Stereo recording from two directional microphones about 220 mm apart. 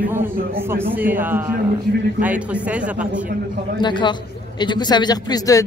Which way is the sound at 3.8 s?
20° left (ahead or behind).